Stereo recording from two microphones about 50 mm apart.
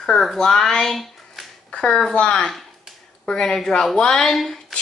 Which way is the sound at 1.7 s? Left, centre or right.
Centre.